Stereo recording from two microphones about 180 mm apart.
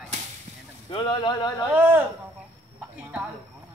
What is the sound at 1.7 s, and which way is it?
Speech, 10° right (ahead or behind).